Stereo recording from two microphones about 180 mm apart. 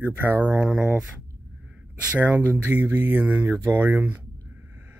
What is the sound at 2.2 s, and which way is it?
Speech, 10° right (ahead or behind).